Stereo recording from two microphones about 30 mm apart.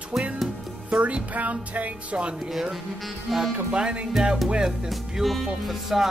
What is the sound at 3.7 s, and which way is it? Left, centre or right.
Music, right.